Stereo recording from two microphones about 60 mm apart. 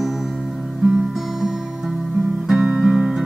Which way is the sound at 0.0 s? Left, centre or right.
Centre.